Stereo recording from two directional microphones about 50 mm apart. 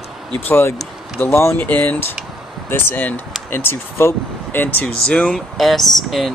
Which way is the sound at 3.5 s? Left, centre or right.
Left.